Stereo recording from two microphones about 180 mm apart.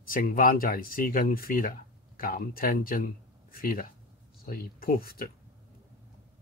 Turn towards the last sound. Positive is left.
turn(degrees=55)  # may be behind; listen again after turning